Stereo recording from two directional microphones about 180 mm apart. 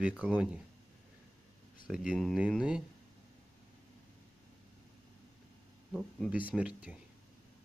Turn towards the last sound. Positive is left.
turn(degrees=-5)  # may be behind; listen again after turning